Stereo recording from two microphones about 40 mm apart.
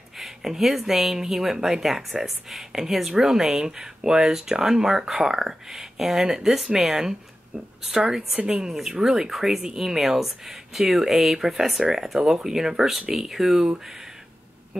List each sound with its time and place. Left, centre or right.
0.2 s speech: centre
8.5 s speech: centre
9.6 s speech: centre
9.9 s speech: centre